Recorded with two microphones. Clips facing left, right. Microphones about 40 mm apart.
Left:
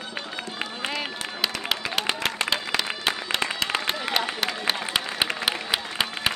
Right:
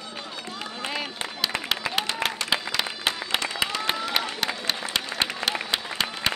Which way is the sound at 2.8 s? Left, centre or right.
Centre.